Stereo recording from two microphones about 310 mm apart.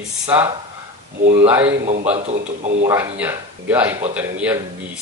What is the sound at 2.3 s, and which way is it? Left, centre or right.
Speech, right.